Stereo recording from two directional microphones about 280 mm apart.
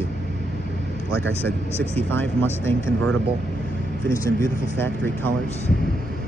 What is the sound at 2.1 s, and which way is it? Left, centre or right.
Speech, centre.